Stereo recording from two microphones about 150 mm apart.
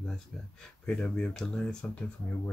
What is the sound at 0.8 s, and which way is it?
Speech, 5° left (ahead or behind).